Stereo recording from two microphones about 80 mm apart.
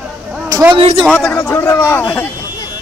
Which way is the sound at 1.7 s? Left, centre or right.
Left.